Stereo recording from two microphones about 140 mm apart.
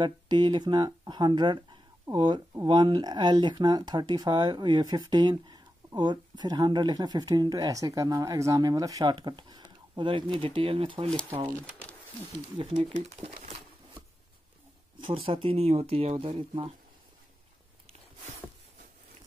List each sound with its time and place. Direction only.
0.0 s speech: 30° right (ahead or behind)
12.7 s speech: 50° right (ahead or behind)
15.0 s speech: 40° right (ahead or behind)